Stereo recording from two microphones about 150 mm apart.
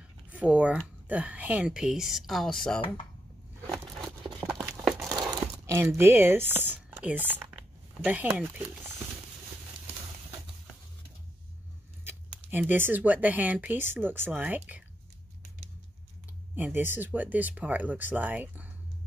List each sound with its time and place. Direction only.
0.3 s speech: 10° right (ahead or behind)
3.7 s a sound: centre (ahead or behind)
4.9 s crumpling: 25° right (ahead or behind)
5.9 s speech: 15° right (ahead or behind)
12.0 s speech: 15° right (ahead or behind)
16.5 s speech: 15° right (ahead or behind)